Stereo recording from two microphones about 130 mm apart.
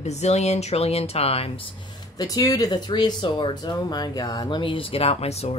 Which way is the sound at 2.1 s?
30° left (ahead or behind).